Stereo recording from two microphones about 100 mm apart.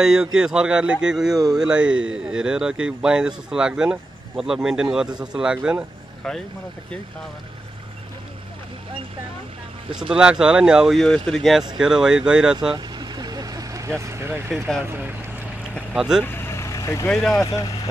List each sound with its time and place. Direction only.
0.0 s speech: 5° right (ahead or behind)
6.2 s speech: 5° left (ahead or behind)
9.9 s speech: 10° right (ahead or behind)
11.0 s speech: 5° left (ahead or behind)
12.7 s vehicle: 45° right (ahead or behind); by 14.4 s 25° right (ahead or behind)
14.9 s boat: 20° right (ahead or behind)
15.9 s speech: 5° right (ahead or behind)
16.3 s vehicle: 25° left (ahead or behind)
17.1 s speech: 5° left (ahead or behind)
17.5 s speech: 35° left (ahead or behind)